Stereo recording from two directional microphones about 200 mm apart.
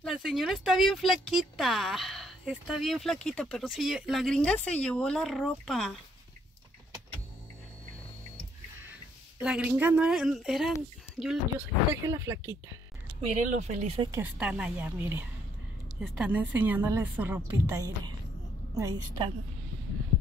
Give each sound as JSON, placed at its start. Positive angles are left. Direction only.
{"t": 0.0, "sound": "speech", "side_deg": 0}
{"t": 9.4, "sound": "speech", "side_deg": -5}
{"t": 11.9, "sound": "a woman's voice", "side_deg": -15}
{"t": 13.3, "sound": "speech", "side_deg": -35}
{"t": 14.1, "sound": "a woman's voice", "side_deg": -5}